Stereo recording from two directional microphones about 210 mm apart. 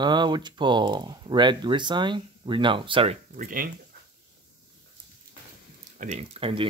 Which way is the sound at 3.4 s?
40° right (ahead or behind).